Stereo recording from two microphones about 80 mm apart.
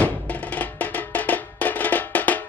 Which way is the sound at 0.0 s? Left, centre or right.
Centre.